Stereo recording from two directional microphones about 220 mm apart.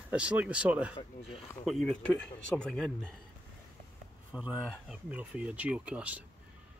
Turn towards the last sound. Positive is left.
turn(degrees=-5)  # may be behind; listen again after turning